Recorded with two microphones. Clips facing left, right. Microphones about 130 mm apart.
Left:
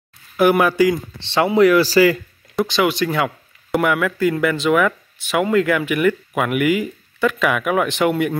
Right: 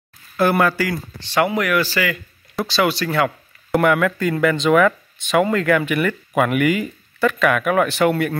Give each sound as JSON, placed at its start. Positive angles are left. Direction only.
{"t": 0.4, "sound": "speech", "side_deg": 15}
{"t": 2.6, "sound": "speech", "side_deg": 20}
{"t": 3.2, "sound": "speech", "side_deg": 5}